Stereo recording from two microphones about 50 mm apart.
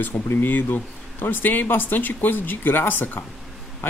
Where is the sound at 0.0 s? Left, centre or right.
Left.